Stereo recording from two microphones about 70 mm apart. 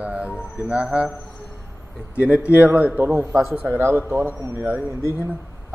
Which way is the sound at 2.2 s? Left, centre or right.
Right.